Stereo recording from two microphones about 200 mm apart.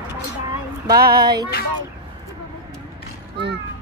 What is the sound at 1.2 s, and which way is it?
Music, 20° right (ahead or behind).